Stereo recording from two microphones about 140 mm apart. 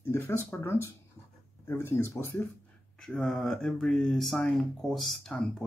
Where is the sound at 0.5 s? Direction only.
15° left (ahead or behind).